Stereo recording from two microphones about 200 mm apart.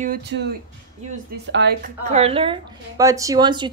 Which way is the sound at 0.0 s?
50° right (ahead or behind).